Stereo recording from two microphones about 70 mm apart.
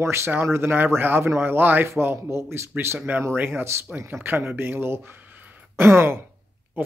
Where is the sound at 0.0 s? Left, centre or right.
Right.